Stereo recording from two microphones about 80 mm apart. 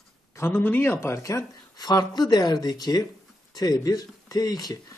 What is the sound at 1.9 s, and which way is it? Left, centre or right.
Speech, left.